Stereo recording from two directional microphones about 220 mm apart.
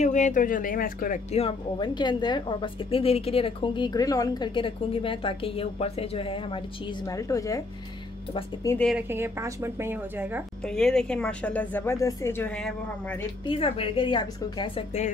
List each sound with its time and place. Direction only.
0.0 s speech: 35° left (ahead or behind); by 7.6 s 15° left (ahead or behind)
8.6 s speech: 5° left (ahead or behind)
8.9 s a woman's voice: 10° right (ahead or behind)
10.6 s speech: centre (ahead or behind)
13.5 s speech: 25° left (ahead or behind)